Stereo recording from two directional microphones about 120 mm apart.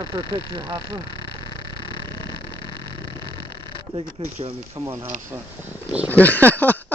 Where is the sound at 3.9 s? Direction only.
65° right (ahead or behind).